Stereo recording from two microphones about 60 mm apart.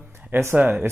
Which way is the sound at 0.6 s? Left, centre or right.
Right.